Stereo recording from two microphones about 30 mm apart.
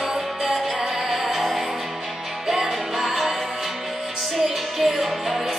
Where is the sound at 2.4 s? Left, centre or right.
Centre.